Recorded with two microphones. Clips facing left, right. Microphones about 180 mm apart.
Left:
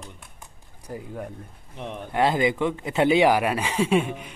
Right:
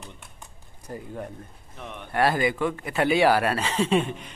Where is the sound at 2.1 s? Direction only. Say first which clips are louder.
Left 1 dB; 20° left (ahead or behind).